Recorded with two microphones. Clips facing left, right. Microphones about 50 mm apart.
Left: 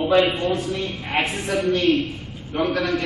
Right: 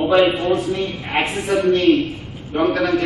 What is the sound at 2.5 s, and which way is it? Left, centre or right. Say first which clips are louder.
Speech: right 5 dB; centre.